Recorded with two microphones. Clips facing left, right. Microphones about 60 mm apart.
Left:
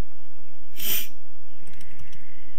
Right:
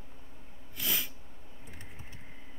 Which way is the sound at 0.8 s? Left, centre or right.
Centre.